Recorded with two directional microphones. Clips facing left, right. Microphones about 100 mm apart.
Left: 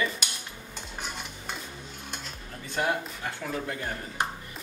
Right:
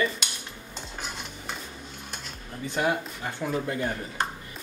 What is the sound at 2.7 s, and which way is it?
Speech, 20° right (ahead or behind).